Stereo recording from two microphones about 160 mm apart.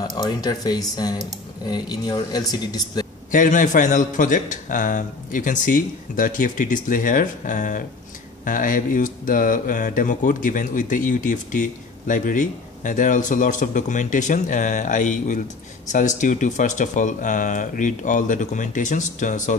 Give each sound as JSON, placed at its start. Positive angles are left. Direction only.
{"t": 0.0, "sound": "speech", "side_deg": 25}
{"t": 3.3, "sound": "speech", "side_deg": 55}